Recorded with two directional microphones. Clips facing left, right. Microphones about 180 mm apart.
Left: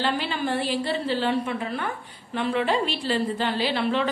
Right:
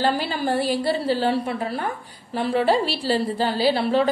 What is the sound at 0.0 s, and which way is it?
A woman's voice, 35° right (ahead or behind).